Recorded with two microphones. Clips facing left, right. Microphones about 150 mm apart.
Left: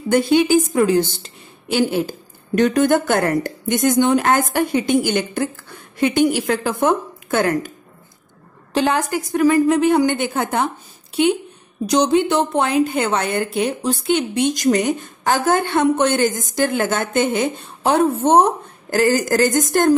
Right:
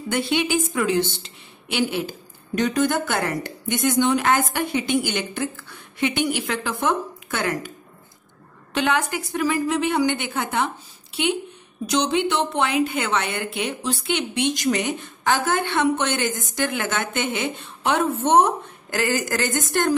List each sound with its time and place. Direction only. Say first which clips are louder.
0.1 s a woman's voice: left 8 dB; 40° left (ahead or behind)
8.7 s a woman's voice: left 4 dB; 35° left (ahead or behind)
11.8 s a woman's voice: left 6 dB; 40° left (ahead or behind)